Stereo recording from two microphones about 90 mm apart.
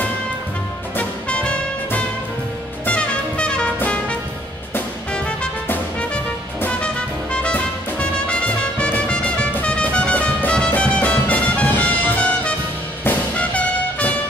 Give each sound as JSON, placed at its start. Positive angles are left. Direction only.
{"t": 0.9, "sound": "music", "side_deg": 15}
{"t": 6.6, "sound": "music", "side_deg": 10}